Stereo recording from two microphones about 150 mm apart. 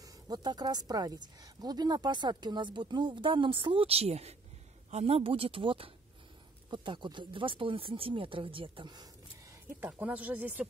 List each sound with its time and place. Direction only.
0.0 s speech: 25° right (ahead or behind)
9.7 s speech: 15° right (ahead or behind)